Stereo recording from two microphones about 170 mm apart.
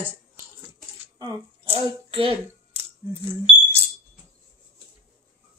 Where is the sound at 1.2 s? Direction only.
30° right (ahead or behind).